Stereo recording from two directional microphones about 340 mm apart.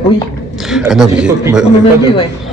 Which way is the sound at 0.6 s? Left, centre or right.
Centre.